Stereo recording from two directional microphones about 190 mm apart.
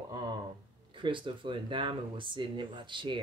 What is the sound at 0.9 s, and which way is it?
Speech, 25° right (ahead or behind).